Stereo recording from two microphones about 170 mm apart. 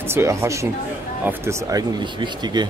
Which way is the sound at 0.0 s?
15° right (ahead or behind).